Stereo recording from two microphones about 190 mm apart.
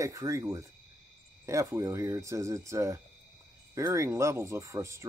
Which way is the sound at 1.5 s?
15° right (ahead or behind).